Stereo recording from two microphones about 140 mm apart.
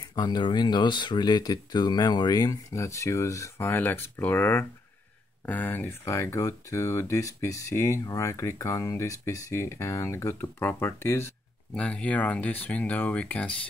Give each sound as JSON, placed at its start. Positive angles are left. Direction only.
{"t": 0.1, "sound": "speech", "side_deg": 30}